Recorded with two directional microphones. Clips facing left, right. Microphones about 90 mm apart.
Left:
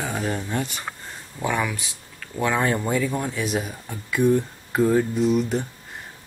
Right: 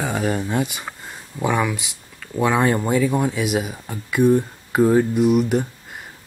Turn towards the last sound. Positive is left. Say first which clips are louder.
# right 4 dB
turn(degrees=-15)  # may be behind; listen again after turning